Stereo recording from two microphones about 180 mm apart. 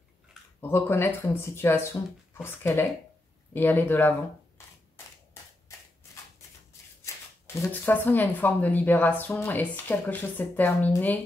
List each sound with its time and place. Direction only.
0.6 s a woman's voice: 10° left (ahead or behind)
7.0 s shuffling cards: 15° left (ahead or behind)
7.4 s a woman's voice: 15° left (ahead or behind)